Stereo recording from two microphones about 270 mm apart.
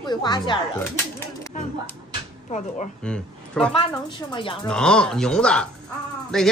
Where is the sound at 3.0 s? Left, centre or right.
Centre.